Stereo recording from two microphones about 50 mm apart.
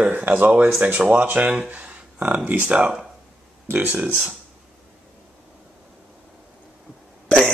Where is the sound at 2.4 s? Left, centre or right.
Right.